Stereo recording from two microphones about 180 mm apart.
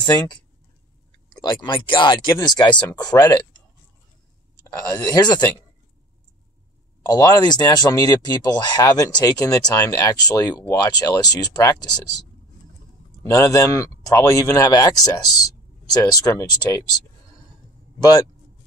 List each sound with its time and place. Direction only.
0.0 s speech: 25° left (ahead or behind)
4.9 s speech: 20° left (ahead or behind)
7.1 s speech: 20° left (ahead or behind)
13.2 s a man's voice: 15° left (ahead or behind)